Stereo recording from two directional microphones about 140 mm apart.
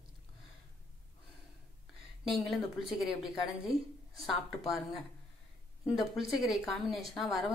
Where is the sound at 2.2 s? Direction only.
Centre (ahead or behind).